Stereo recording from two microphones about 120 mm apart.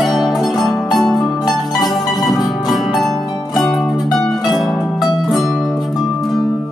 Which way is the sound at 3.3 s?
35° left (ahead or behind).